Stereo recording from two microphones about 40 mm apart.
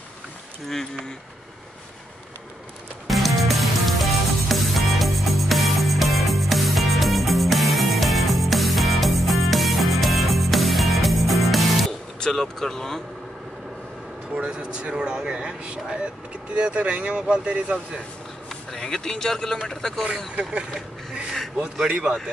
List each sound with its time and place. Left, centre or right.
3.1 s music: centre
12.3 s speech: centre
14.3 s speech: right
18.5 s speech: centre
21.8 s speech: right